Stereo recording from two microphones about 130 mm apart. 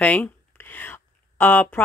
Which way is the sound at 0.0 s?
10° left (ahead or behind).